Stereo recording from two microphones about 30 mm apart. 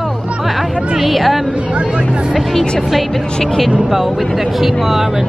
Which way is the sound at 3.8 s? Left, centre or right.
Centre.